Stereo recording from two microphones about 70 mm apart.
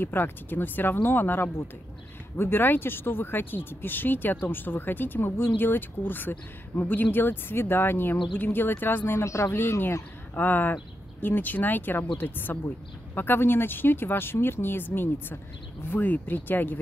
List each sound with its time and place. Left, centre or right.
0.0 s speech: left
9.6 s speech: left